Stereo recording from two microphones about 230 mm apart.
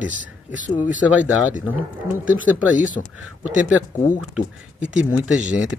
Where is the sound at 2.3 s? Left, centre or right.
Left.